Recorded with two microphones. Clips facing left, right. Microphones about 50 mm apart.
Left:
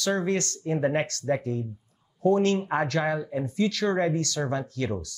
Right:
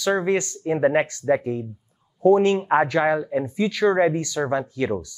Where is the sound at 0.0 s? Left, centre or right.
Centre.